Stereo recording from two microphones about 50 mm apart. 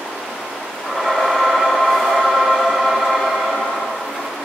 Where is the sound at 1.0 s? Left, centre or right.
Centre.